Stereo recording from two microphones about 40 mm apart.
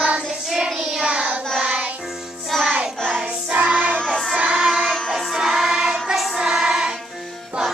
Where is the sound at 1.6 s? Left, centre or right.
Right.